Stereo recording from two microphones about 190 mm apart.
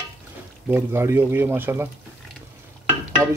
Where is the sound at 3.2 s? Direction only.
15° right (ahead or behind).